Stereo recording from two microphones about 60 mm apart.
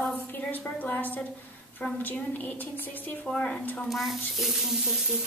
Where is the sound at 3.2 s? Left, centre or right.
Centre.